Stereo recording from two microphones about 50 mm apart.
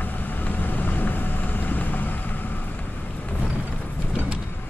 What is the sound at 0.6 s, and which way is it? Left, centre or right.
Vehicle, left.